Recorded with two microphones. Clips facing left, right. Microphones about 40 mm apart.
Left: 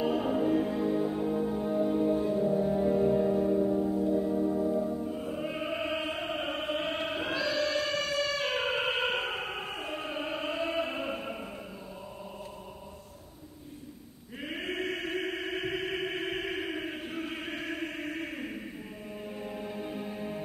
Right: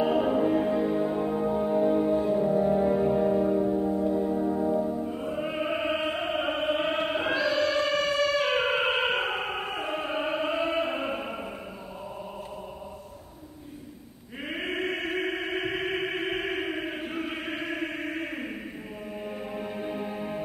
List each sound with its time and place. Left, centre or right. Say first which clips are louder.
0.0 s music: right 4 dB; right
6.8 s choir: right 5 dB; centre
7.1 s music: right 5 dB; right
9.0 s opera: right 4 dB; centre
9.8 s music: right 6 dB; right
14.5 s a sound: right 4 dB; centre
19.2 s music: right 3 dB; right